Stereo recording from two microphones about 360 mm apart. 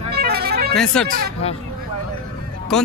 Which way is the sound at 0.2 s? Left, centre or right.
Right.